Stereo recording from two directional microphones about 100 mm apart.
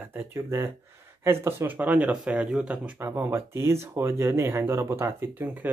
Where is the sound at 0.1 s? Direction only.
25° right (ahead or behind).